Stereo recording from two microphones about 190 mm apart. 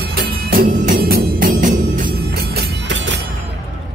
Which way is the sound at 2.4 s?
65° right (ahead or behind).